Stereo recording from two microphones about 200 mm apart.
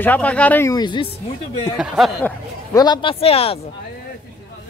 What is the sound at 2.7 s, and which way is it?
Speech, 25° left (ahead or behind).